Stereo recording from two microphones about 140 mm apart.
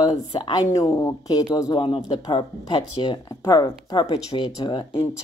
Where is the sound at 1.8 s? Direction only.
35° left (ahead or behind).